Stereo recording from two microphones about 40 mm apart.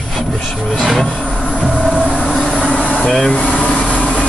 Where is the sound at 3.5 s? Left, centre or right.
Left.